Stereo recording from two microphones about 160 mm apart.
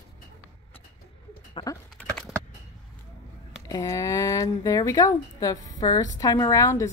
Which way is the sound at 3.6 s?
20° left (ahead or behind).